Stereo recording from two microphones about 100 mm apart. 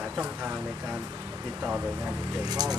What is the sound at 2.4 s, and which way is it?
Speech, 40° right (ahead or behind).